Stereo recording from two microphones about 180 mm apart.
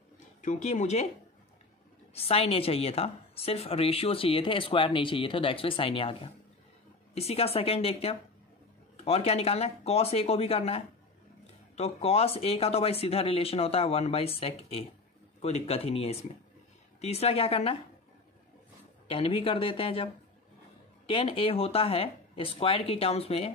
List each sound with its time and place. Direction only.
0.4 s a woman's voice: 40° left (ahead or behind)
2.1 s a woman's voice: 35° left (ahead or behind)
19.0 s speech: 30° left (ahead or behind)
21.1 s a woman's voice: 30° left (ahead or behind)